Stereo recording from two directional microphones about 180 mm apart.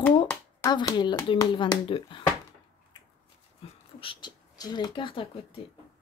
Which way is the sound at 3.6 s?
30° left (ahead or behind).